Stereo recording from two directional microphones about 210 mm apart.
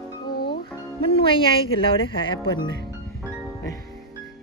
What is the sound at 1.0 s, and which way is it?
Speech, 25° left (ahead or behind).